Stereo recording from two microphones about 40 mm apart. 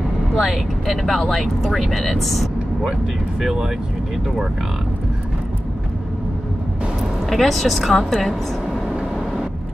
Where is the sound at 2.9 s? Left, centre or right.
Centre.